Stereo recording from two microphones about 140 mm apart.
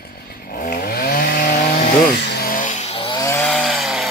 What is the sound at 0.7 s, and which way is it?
Chainsaw, 90° left.